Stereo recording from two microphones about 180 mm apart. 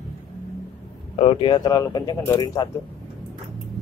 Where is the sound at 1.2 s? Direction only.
30° left (ahead or behind).